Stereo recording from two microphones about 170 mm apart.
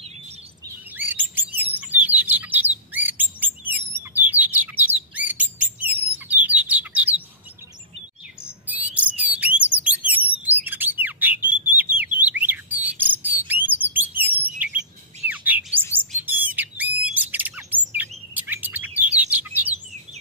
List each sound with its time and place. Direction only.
0.9 s chirp: 10° right (ahead or behind)
1.8 s bird: 10° right (ahead or behind)
8.6 s bird: 10° right (ahead or behind)
15.2 s chirp: 10° right (ahead or behind)
15.9 s bird: 10° right (ahead or behind)